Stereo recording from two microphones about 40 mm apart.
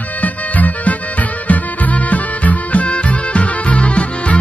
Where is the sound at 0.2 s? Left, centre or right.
Left.